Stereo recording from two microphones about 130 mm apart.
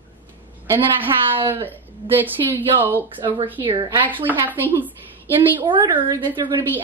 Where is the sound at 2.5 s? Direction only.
15° right (ahead or behind).